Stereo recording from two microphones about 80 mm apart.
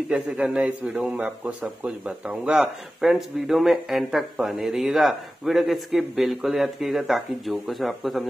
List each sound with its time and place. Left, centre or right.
0.6 s a man's voice: centre